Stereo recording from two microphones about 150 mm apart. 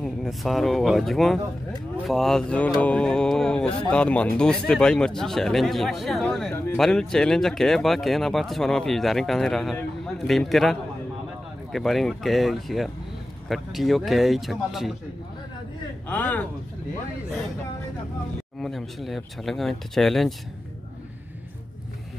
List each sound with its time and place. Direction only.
0.0 s speech: centre (ahead or behind)
6.5 s speech: 15° left (ahead or behind)
6.8 s speech: 5° left (ahead or behind)
16.1 s speech: 10° left (ahead or behind)
18.6 s speech: centre (ahead or behind)